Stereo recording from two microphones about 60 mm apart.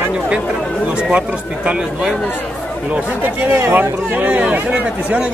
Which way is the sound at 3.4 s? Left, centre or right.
Right.